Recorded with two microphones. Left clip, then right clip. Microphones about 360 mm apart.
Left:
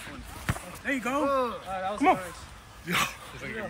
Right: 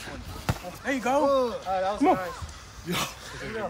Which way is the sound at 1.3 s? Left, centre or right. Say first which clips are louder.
Right 3 dB; centre.